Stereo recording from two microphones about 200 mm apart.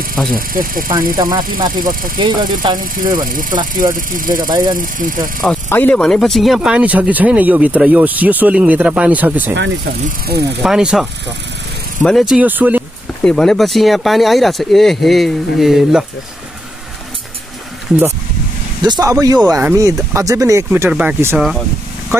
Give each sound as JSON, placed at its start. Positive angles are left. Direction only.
{"t": 0.3, "sound": "speech", "side_deg": -45}
{"t": 2.1, "sound": "speech", "side_deg": -25}
{"t": 2.8, "sound": "speech", "side_deg": -45}
{"t": 4.5, "sound": "speech", "side_deg": -20}
{"t": 4.7, "sound": "speech", "side_deg": -45}
{"t": 5.4, "sound": "speech", "side_deg": 5}
{"t": 10.6, "sound": "speech", "side_deg": -5}
{"t": 13.2, "sound": "speech", "side_deg": 5}
{"t": 18.8, "sound": "speech", "side_deg": -20}